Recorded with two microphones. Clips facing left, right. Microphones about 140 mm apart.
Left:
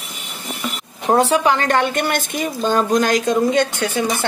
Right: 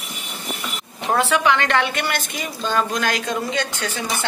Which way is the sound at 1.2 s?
35° left (ahead or behind).